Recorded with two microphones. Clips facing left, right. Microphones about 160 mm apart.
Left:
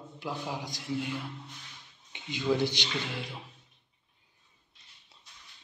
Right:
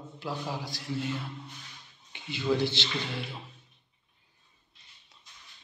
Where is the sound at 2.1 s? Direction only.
15° left (ahead or behind).